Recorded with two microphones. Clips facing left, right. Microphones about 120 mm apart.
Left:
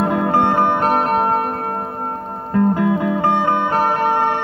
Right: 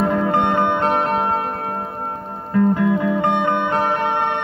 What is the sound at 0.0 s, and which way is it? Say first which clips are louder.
Music: left 1 dB; 45° left (ahead or behind).